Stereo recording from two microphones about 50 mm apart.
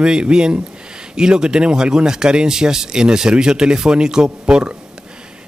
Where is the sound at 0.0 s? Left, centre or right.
Centre.